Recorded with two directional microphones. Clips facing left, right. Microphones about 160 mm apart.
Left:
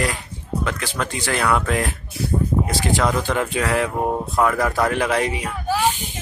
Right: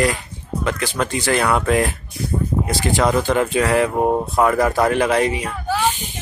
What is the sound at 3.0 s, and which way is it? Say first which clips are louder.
Speech: right 6 dB; 10° right (ahead or behind).